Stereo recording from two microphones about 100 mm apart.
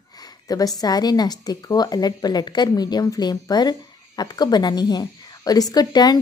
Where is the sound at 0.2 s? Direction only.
40° left (ahead or behind).